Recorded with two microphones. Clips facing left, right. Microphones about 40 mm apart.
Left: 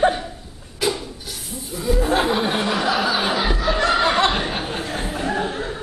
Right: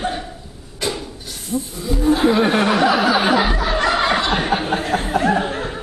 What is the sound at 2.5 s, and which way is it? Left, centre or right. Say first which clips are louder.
Speech: right 6 dB; right.